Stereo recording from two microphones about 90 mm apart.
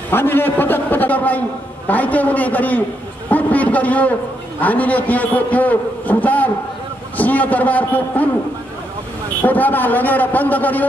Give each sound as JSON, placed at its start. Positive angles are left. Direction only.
{"t": 0.1, "sound": "a man's voice", "side_deg": 25}
{"t": 9.4, "sound": "a man's voice", "side_deg": 20}